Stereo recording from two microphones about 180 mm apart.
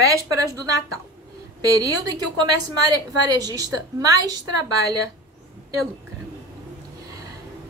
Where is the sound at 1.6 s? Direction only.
20° right (ahead or behind).